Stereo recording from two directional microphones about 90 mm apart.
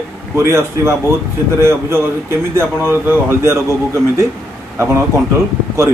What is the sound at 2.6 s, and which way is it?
A man's voice, 25° right (ahead or behind).